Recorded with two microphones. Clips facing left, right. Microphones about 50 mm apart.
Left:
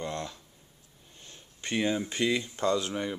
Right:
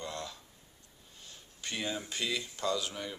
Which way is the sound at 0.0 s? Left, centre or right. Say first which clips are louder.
Left 5 dB; left.